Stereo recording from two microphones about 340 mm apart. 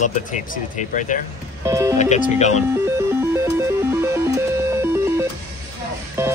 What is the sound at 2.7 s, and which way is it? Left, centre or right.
Music, centre.